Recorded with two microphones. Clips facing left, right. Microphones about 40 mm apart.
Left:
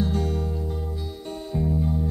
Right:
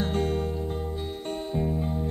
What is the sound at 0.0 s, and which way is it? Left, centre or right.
Music, right.